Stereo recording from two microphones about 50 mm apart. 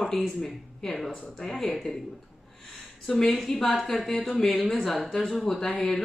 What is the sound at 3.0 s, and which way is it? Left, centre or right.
Speech, centre.